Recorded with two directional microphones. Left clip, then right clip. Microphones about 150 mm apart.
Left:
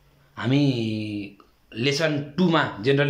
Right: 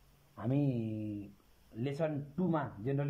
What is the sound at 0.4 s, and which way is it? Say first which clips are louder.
Mantra: left 12 dB; 40° right (ahead or behind).